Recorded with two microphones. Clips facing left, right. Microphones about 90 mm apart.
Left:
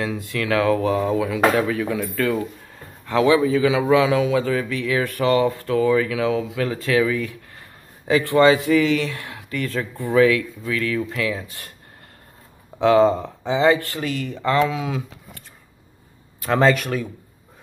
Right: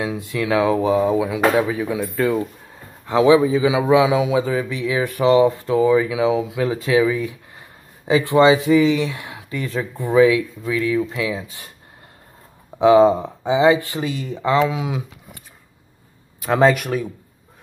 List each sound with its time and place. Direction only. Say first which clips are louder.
0.0 s a man's voice: right 2 dB; 20° right (ahead or behind)
12.7 s a man's voice: right 3 dB; 15° right (ahead or behind)
16.4 s a man's voice: right 2 dB; 10° right (ahead or behind)